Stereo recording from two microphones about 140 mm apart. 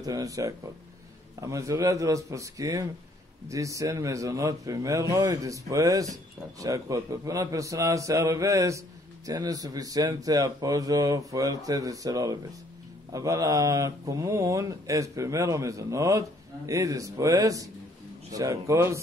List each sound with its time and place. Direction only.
0.0 s a man's voice: 25° right (ahead or behind)